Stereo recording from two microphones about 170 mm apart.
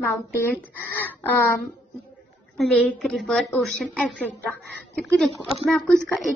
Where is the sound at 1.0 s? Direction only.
10° left (ahead or behind).